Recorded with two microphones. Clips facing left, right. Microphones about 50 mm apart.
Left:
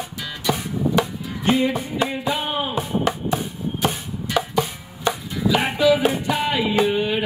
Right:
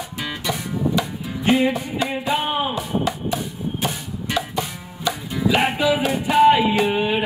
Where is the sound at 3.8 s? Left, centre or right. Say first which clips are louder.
Left 5 dB; left.